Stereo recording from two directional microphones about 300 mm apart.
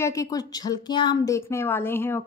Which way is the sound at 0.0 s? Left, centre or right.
Centre.